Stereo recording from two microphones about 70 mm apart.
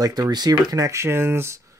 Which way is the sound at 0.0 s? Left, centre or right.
Right.